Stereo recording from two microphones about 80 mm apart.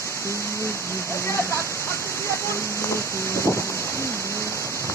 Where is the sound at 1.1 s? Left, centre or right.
Left.